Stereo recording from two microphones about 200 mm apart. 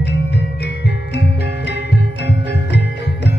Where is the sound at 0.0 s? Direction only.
60° left (ahead or behind).